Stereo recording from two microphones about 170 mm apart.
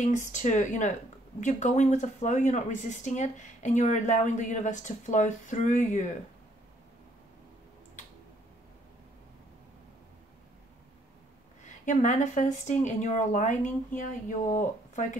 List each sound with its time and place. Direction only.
0.0 s speech: 45° left (ahead or behind)
11.6 s speech: 45° left (ahead or behind)